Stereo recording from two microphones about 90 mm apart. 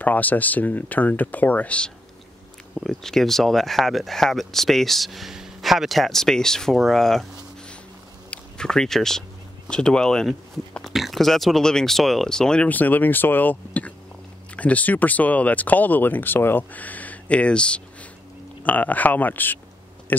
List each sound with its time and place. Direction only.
0.0 s speech: 20° left (ahead or behind)
2.7 s speech: 5° left (ahead or behind)
8.3 s a sound: 5° left (ahead or behind)
9.7 s speech: 10° left (ahead or behind)
12.6 s speech: 20° left (ahead or behind)